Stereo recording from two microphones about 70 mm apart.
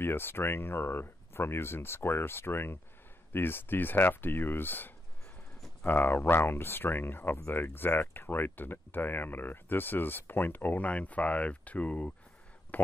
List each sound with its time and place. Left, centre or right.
0.0 s speech: left